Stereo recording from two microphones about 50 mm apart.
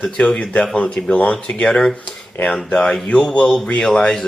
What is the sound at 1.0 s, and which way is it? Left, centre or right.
Speech, left.